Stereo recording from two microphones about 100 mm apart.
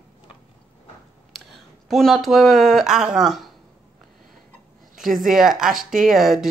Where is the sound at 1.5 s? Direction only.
Centre (ahead or behind).